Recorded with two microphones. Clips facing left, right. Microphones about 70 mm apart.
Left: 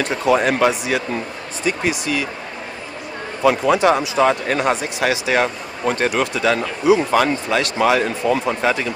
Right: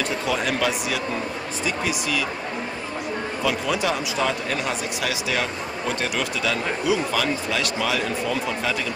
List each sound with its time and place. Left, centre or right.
0.0 s speech: left
3.4 s speech: left